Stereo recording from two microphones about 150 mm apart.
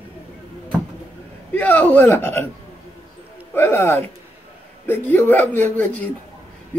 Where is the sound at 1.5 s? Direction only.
10° left (ahead or behind).